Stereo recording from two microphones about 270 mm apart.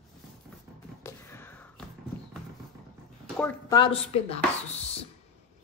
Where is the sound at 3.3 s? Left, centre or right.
Centre.